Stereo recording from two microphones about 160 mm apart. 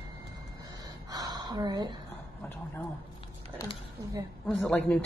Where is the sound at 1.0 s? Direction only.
25° right (ahead or behind).